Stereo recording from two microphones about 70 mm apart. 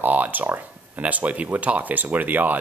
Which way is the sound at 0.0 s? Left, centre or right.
Right.